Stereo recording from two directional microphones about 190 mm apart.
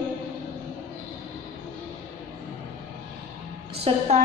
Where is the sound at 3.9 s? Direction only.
30° right (ahead or behind).